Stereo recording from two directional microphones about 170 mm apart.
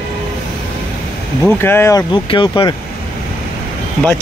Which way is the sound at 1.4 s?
10° left (ahead or behind).